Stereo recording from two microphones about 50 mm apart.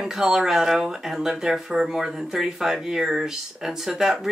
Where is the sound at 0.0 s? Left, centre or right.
Centre.